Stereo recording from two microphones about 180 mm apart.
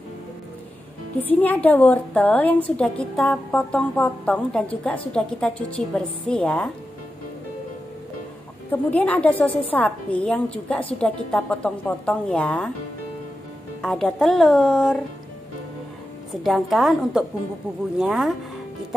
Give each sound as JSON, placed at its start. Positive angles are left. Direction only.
{"t": 1.2, "sound": "a woman's voice", "side_deg": 10}
{"t": 8.9, "sound": "a woman's voice", "side_deg": 10}
{"t": 13.7, "sound": "speech", "side_deg": 0}
{"t": 16.4, "sound": "speech", "side_deg": 0}